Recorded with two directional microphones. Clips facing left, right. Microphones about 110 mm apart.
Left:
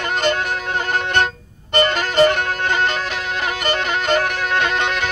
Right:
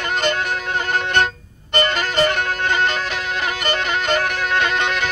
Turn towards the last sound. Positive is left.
turn(degrees=35)  # may be behind; listen again after turning